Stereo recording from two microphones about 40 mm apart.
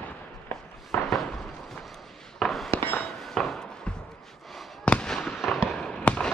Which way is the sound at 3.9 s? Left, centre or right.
Left.